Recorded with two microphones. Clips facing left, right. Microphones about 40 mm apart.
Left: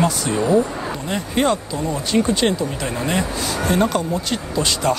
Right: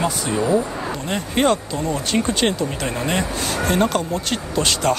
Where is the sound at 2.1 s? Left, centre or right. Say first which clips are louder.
Left 4 dB; centre.